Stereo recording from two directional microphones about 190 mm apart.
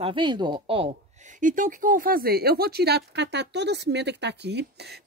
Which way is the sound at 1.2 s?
45° right (ahead or behind).